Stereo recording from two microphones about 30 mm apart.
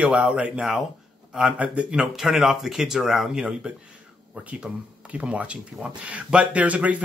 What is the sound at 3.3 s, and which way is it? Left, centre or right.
Speech, right.